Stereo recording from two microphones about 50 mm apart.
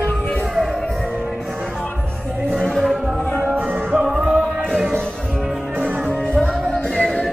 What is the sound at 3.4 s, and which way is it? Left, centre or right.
Music, right.